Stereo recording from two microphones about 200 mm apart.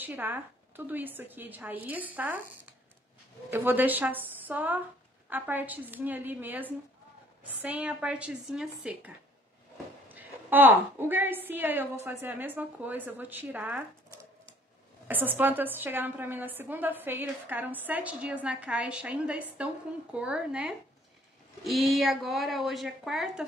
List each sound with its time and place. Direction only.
0.0 s a woman's voice: 10° right (ahead or behind)
15.0 s a woman's voice: 10° right (ahead or behind)